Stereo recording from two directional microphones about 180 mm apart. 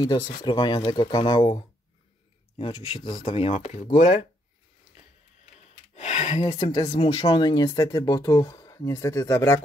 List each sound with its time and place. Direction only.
0.0 s speech: 25° left (ahead or behind)
2.6 s speech: 30° left (ahead or behind)
5.9 s speech: 40° left (ahead or behind); by 9.6 s 15° left (ahead or behind)